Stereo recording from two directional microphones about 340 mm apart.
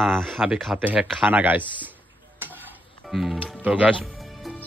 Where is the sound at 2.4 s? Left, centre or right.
Centre.